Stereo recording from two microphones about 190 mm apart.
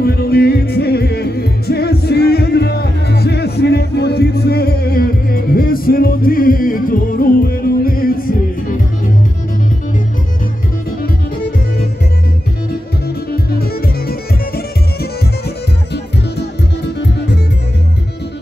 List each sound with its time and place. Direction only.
0.0 s music: 55° left (ahead or behind)
13.3 s music: 55° left (ahead or behind)